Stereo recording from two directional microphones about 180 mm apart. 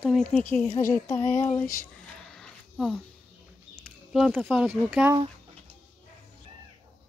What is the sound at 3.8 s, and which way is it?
Speech, centre (ahead or behind).